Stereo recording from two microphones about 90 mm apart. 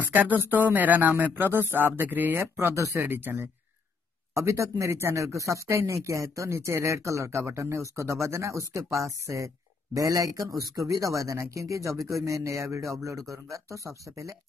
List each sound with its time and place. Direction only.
0.1 s speech: 20° right (ahead or behind)
2.5 s speech: 35° right (ahead or behind)
4.3 s speech: 35° right (ahead or behind)